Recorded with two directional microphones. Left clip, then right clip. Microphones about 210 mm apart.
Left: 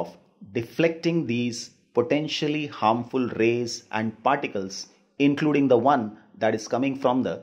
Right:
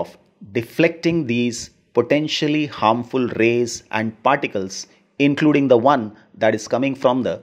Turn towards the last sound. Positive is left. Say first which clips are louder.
# right 6 dB
turn(degrees=-30)  # may be behind; listen again after turning